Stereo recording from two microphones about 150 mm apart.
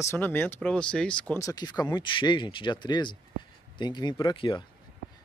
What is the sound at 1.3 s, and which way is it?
Speech, 25° left (ahead or behind).